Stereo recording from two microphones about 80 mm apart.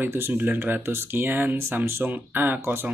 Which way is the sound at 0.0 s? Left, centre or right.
Right.